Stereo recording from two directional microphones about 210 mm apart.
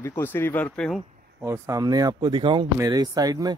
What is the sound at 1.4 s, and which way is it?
Speech, 15° right (ahead or behind).